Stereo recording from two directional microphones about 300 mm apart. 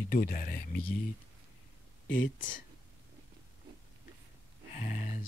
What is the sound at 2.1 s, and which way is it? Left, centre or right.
Speech, left.